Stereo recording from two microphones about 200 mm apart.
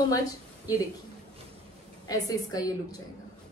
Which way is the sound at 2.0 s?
20° left (ahead or behind).